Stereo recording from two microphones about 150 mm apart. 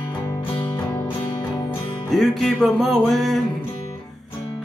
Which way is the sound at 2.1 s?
Centre (ahead or behind).